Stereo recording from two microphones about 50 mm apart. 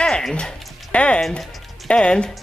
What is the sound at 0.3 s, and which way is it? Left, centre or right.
Speech, centre.